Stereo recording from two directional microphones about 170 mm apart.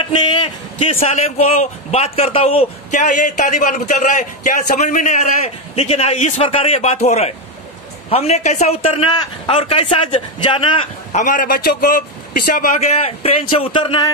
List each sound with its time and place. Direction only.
0.0 s speech: 30° left (ahead or behind)
11.1 s a man's voice: 45° left (ahead or behind)
12.9 s speech: 35° left (ahead or behind)